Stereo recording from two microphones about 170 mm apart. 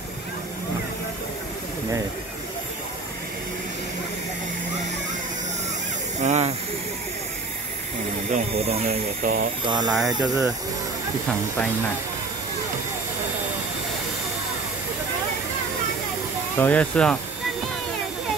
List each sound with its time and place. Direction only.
6.1 s hiss: 45° right (ahead or behind)
8.3 s speech: 35° right (ahead or behind)
8.8 s speech: 55° right (ahead or behind)
9.8 s speech: centre (ahead or behind)
16.5 s speech: 10° left (ahead or behind)